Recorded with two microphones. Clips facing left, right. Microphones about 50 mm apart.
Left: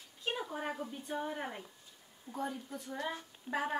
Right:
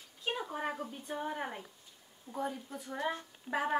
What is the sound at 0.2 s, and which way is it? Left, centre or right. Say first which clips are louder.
A woman's voice: right 1 dB; centre.